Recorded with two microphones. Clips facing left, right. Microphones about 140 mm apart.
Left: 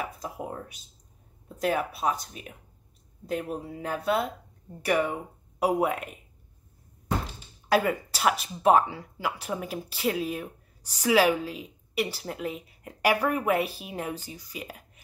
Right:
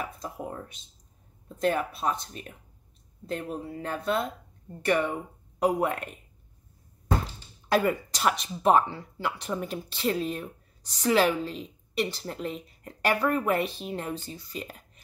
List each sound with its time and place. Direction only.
0.0 s a sound: 10° left (ahead or behind)
1.6 s speech: 10° left (ahead or behind)
7.7 s speech: 5° left (ahead or behind)